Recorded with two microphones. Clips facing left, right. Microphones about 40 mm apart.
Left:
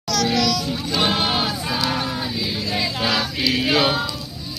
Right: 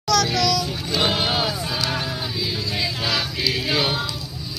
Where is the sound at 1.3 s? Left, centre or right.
Left.